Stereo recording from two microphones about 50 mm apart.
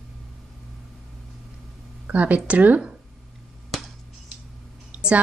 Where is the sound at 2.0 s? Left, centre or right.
Right.